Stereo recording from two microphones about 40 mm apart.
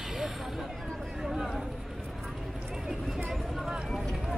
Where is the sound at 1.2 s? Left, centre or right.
Centre.